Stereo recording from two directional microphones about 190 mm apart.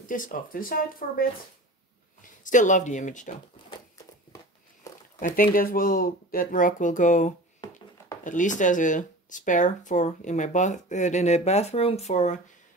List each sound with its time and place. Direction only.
0.0 s speech: 45° left (ahead or behind)
2.4 s speech: 40° left (ahead or behind)
5.2 s speech: 45° left (ahead or behind)